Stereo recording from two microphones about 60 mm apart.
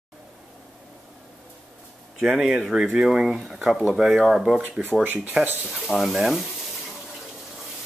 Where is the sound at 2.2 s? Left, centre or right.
Centre.